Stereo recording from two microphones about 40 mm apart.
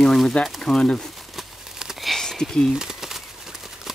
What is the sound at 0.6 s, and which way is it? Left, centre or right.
Speech, centre.